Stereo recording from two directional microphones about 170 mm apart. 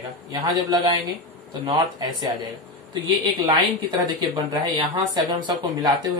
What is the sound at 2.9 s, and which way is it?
Speech, 25° right (ahead or behind).